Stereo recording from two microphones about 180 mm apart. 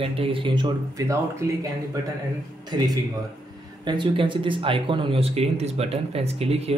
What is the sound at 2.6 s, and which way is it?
Speech, 20° right (ahead or behind).